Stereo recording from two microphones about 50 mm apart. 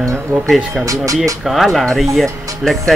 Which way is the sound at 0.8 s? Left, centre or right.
Right.